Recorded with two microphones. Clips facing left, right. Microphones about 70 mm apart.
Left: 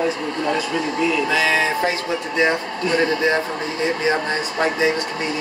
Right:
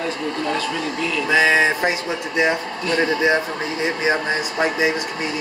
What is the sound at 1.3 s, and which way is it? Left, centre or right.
Speech, right.